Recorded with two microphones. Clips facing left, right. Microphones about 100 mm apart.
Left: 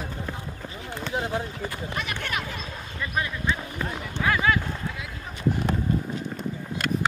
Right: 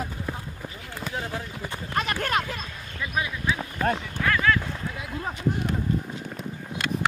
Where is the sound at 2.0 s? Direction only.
40° right (ahead or behind).